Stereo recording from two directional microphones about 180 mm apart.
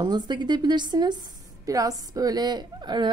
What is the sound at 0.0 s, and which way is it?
A woman's voice, 25° right (ahead or behind).